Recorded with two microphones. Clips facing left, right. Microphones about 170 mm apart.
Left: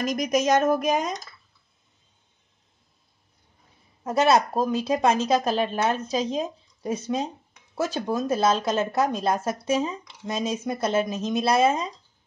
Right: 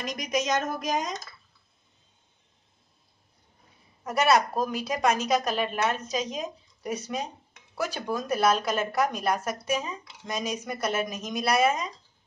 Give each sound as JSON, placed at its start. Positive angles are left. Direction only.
{"t": 0.0, "sound": "a woman's voice", "side_deg": 45}
{"t": 4.0, "sound": "speech", "side_deg": 25}